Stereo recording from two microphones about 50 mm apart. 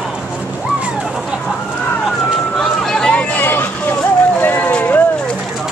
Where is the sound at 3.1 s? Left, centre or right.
Left.